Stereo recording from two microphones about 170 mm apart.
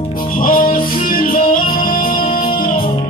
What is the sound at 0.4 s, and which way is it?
Music, 55° left (ahead or behind).